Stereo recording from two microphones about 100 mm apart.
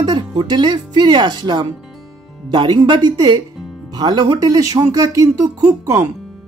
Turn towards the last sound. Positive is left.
turn(degrees=-30)  # may be behind; listen again after turning